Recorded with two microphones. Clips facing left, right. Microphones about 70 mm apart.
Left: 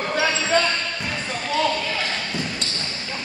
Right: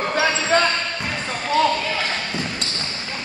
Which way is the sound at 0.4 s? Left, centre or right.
Right.